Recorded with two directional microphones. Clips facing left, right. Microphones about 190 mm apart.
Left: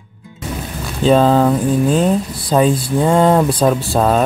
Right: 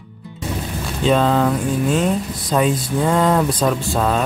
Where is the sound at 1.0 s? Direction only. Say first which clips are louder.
Left 5 dB; 35° left (ahead or behind).